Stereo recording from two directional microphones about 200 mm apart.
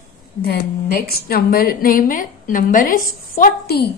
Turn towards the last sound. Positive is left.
turn(degrees=50)  # may be behind; listen again after turning